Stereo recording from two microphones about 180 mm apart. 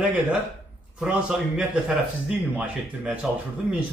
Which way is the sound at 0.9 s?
10° right (ahead or behind).